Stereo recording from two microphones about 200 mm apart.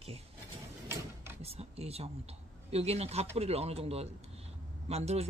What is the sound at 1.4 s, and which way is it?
Speech, 30° right (ahead or behind).